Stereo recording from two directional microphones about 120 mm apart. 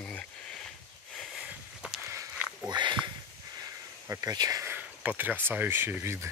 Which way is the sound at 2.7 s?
40° right (ahead or behind).